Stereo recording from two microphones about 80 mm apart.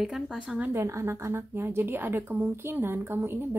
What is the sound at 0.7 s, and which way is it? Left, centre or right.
A woman's voice, right.